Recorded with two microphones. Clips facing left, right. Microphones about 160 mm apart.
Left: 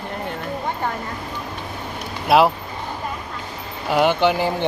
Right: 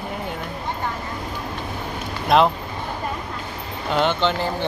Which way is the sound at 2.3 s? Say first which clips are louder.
Left 2 dB; 5° left (ahead or behind).